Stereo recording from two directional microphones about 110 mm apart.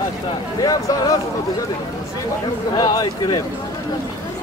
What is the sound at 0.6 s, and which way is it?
Speech, 35° left (ahead or behind).